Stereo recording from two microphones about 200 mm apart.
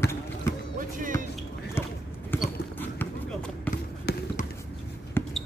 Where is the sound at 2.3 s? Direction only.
10° left (ahead or behind).